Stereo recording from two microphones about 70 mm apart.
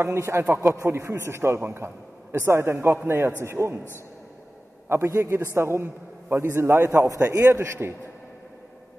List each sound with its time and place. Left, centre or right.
0.0 s a man's voice: right
4.8 s a man's voice: right